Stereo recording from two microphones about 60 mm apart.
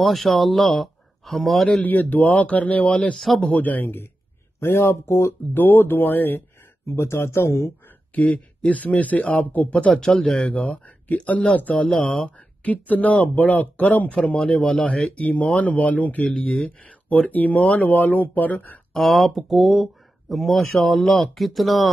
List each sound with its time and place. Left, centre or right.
0.0 s speech: centre
1.8 s speech: left
3.2 s a man's voice: centre
3.5 s speech: left
5.5 s speech: left
6.9 s speech: left
8.1 s speech: left
9.9 s a man's voice: centre
10.5 s speech: left
16.3 s a man's voice: centre
17.1 s speech: left
18.9 s speech: centre